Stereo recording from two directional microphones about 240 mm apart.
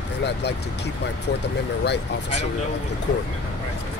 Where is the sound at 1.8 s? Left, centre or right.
Left.